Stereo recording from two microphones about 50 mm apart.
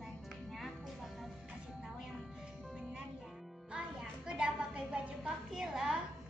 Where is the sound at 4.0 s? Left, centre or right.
Centre.